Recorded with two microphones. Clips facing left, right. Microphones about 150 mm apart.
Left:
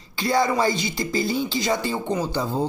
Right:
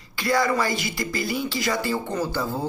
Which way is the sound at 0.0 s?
25° left (ahead or behind).